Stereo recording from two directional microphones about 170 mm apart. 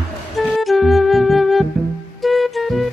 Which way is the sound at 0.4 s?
Centre (ahead or behind).